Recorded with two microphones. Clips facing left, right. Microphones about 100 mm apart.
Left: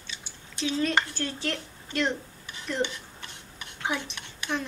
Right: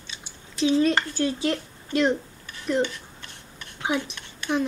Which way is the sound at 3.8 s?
15° right (ahead or behind).